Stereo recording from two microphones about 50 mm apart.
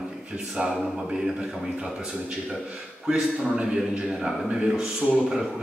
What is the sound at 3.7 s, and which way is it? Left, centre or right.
Speech, centre.